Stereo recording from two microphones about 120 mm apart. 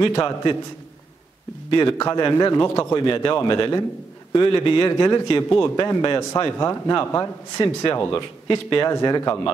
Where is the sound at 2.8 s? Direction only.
35° left (ahead or behind).